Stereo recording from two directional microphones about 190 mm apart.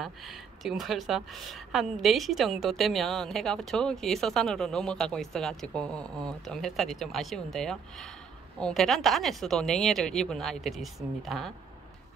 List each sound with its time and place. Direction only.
0.0 s a woman's voice: centre (ahead or behind)